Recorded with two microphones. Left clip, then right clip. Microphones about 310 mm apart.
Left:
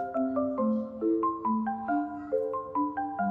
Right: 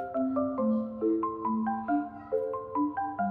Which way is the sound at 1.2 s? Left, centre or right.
Centre.